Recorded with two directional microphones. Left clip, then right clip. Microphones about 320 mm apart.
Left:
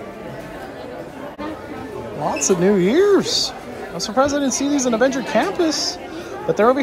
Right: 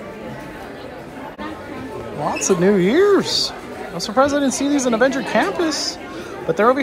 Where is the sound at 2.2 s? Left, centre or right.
Centre.